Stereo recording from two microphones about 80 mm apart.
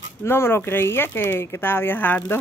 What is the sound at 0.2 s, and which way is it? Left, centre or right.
Speech, left.